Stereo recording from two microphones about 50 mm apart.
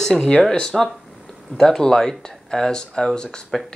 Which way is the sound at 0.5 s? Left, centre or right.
Centre.